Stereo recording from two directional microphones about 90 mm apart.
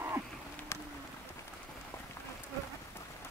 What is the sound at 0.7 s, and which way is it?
Run, 30° left (ahead or behind).